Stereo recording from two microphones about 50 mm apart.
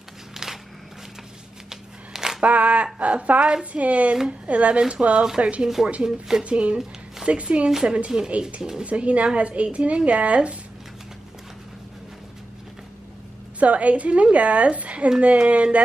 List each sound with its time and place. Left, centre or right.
1.7 s a sound: centre
2.4 s a woman's voice: right
6.0 s speech: centre
6.4 s a woman's voice: right
13.6 s a woman's voice: right